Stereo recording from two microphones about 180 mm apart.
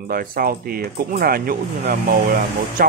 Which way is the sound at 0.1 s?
55° right (ahead or behind).